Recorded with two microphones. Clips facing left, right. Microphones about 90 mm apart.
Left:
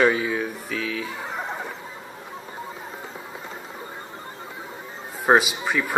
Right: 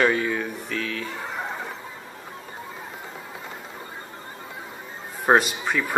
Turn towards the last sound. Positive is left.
turn(degrees=0)  # may be behind; listen again after turning